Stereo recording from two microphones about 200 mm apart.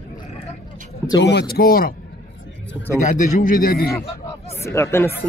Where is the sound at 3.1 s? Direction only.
40° left (ahead or behind).